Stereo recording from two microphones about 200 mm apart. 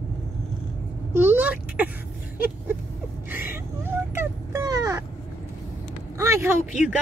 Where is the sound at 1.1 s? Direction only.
10° right (ahead or behind).